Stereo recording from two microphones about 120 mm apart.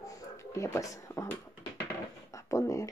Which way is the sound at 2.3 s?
25° left (ahead or behind).